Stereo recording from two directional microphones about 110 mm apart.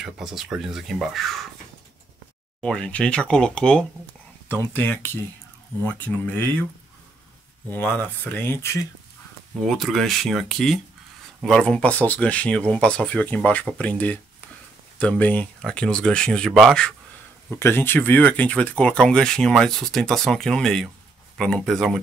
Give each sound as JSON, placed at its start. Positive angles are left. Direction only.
{"t": 0.0, "sound": "speech", "side_deg": -5}
{"t": 2.6, "sound": "speech", "side_deg": 10}
{"t": 4.5, "sound": "speech", "side_deg": 20}
{"t": 7.7, "sound": "speech", "side_deg": 15}
{"t": 9.7, "sound": "speech", "side_deg": 0}
{"t": 17.5, "sound": "speech", "side_deg": 20}